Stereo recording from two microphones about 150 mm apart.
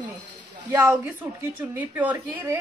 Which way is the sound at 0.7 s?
10° right (ahead or behind).